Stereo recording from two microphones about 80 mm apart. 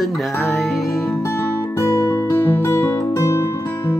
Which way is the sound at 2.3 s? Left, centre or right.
Left.